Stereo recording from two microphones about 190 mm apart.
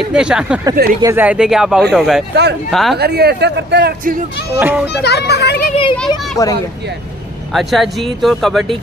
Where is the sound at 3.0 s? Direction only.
60° right (ahead or behind).